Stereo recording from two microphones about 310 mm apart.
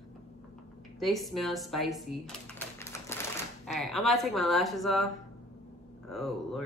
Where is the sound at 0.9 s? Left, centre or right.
Centre.